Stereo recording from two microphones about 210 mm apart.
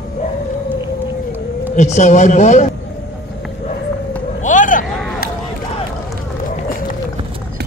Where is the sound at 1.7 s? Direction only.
35° left (ahead or behind).